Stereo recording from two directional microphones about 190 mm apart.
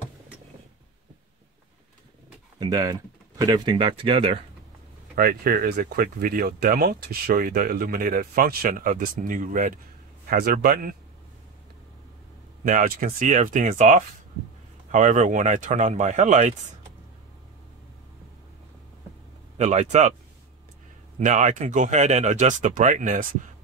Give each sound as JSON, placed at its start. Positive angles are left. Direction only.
{"t": 2.6, "sound": "speech", "side_deg": -20}
{"t": 5.1, "sound": "speech", "side_deg": -50}
{"t": 12.6, "sound": "speech", "side_deg": -50}
{"t": 19.6, "sound": "speech", "side_deg": -35}
{"t": 21.2, "sound": "speech", "side_deg": -40}